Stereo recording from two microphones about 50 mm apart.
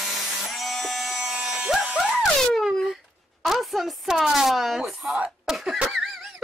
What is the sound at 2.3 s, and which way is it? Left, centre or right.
Baby cry, centre.